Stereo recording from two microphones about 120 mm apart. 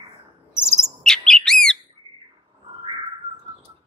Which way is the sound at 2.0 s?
35° right (ahead or behind).